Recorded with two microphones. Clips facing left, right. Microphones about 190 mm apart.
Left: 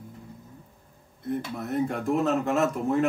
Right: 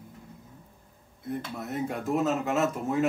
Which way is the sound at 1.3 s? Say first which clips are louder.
Left 4 dB; centre (ahead or behind).